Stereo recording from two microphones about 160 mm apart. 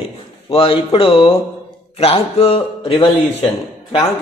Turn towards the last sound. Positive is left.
turn(degrees=40)  # may be behind; listen again after turning